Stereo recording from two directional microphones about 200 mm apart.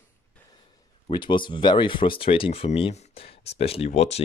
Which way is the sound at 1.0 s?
25° left (ahead or behind).